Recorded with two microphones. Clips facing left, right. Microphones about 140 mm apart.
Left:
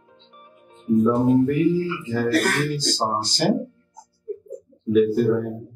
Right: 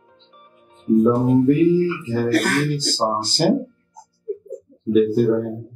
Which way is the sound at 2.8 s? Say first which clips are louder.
Right 2 dB; 30° right (ahead or behind).